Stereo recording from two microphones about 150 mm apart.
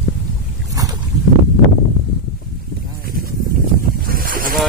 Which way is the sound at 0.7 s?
25° right (ahead or behind).